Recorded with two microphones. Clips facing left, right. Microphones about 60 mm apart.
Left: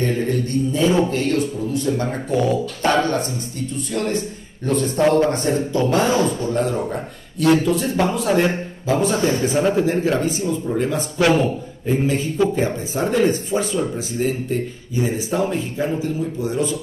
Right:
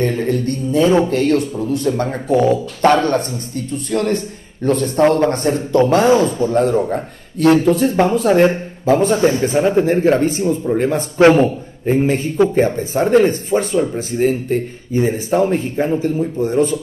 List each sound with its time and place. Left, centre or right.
0.0 s a man's voice: right
2.3 s a man's voice: right
2.8 s a man's voice: right